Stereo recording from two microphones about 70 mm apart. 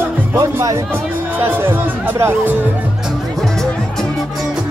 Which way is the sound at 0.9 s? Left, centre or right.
Right.